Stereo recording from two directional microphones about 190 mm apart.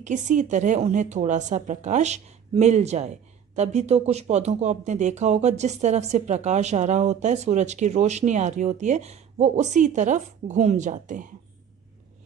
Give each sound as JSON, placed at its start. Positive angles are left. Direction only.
{"t": 0.0, "sound": "speech", "side_deg": -40}